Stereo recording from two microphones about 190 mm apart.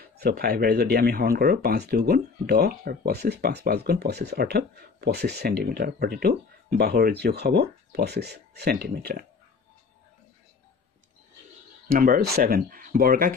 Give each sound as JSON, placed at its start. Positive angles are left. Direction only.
{"t": 0.2, "sound": "speech", "side_deg": -50}
{"t": 11.9, "sound": "speech", "side_deg": -50}